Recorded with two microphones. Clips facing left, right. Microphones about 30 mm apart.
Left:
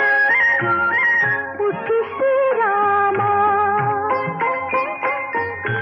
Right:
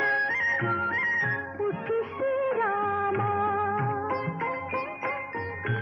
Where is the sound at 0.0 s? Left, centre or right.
Left.